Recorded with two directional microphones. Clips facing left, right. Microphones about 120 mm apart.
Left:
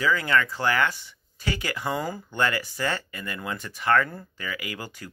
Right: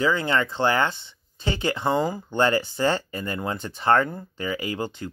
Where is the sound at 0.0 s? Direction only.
30° right (ahead or behind).